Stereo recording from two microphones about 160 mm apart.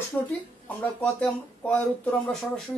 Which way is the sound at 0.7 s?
5° left (ahead or behind).